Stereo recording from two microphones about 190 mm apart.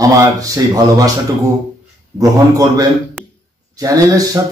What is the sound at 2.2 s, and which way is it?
Speech, 20° right (ahead or behind).